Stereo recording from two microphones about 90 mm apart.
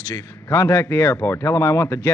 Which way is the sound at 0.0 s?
35° left (ahead or behind).